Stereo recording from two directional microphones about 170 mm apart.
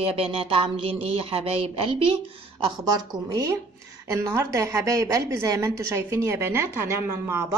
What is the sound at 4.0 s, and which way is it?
A woman's voice, 15° right (ahead or behind).